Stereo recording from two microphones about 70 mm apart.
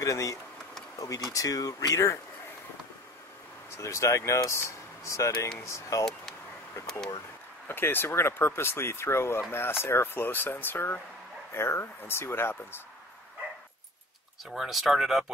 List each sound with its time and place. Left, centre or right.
0.0 s speech: left
3.7 s speech: left
7.6 s speech: left
14.4 s speech: centre